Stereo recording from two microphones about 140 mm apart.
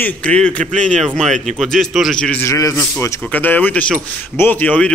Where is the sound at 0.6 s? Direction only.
55° right (ahead or behind).